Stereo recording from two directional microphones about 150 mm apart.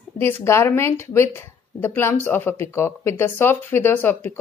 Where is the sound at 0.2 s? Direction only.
15° left (ahead or behind).